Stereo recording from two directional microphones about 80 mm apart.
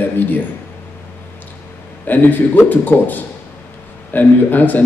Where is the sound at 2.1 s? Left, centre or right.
Left.